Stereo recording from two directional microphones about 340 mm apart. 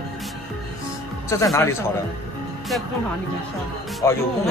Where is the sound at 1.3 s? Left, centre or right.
Centre.